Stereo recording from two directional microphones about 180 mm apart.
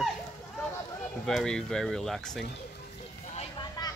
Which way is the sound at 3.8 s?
20° left (ahead or behind).